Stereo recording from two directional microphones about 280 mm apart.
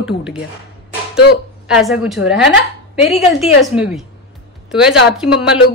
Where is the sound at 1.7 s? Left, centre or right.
Centre.